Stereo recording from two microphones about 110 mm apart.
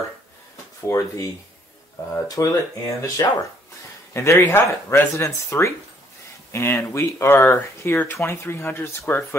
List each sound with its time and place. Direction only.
0.8 s speech: 25° left (ahead or behind)
2.4 s speech: 30° left (ahead or behind)
4.1 s speech: 25° left (ahead or behind)